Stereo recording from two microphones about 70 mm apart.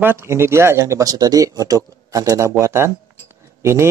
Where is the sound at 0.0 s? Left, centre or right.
Right.